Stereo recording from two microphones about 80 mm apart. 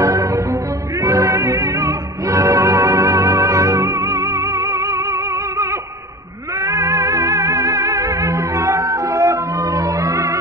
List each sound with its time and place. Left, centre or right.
0.0 s music: right